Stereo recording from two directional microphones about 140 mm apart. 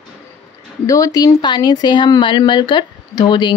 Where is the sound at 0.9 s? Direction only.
25° left (ahead or behind).